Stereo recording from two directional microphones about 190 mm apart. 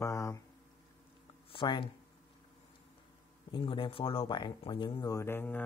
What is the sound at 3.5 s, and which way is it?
Speech, 25° left (ahead or behind).